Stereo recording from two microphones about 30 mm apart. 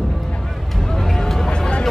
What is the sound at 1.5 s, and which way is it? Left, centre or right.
Music, left.